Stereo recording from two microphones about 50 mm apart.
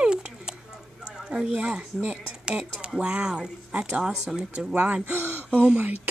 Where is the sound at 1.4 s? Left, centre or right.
Right.